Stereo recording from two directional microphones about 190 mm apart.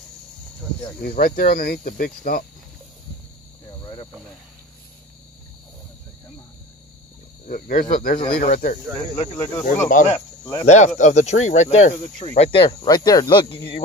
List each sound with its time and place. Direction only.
1.0 s speech: 50° left (ahead or behind)
3.6 s cricket: 25° left (ahead or behind)
7.4 s speech: 45° left (ahead or behind)
9.3 s speech: 20° left (ahead or behind)
10.6 s speech: 35° left (ahead or behind)